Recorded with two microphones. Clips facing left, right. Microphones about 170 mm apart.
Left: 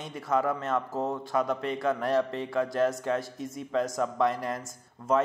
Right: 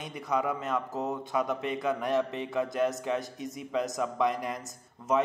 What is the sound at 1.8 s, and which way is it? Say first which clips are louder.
Speech: left 2 dB; 15° right (ahead or behind).